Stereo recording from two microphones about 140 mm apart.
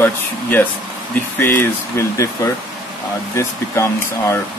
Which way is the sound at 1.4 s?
15° left (ahead or behind).